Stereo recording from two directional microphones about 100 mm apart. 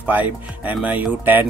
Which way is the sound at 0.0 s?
15° right (ahead or behind).